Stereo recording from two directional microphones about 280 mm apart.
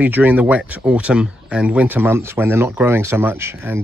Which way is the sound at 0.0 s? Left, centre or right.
Centre.